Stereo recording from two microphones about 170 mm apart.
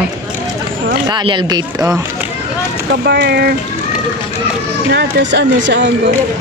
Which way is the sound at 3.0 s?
80° right.